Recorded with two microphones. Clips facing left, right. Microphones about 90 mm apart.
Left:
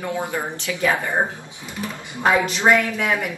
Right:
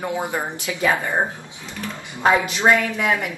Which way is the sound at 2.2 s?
20° right (ahead or behind).